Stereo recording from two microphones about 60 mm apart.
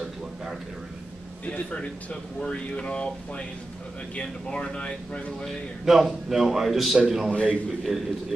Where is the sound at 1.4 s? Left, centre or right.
Left.